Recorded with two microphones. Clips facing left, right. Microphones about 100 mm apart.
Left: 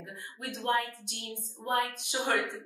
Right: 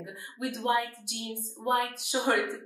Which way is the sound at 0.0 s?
15° right (ahead or behind).